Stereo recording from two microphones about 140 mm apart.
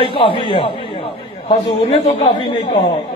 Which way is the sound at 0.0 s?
35° left (ahead or behind).